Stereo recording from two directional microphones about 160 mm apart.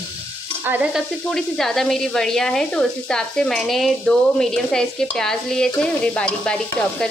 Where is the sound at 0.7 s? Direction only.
10° right (ahead or behind).